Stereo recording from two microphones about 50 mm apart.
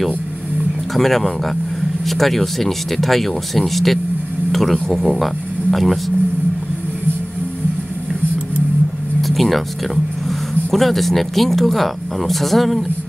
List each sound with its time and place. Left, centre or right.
0.9 s speech: centre
9.2 s a sound: centre
10.7 s speech: centre